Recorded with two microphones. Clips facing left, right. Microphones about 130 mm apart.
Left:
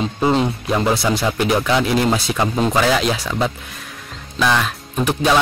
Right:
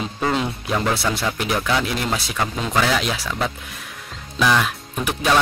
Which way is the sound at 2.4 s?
35° left (ahead or behind).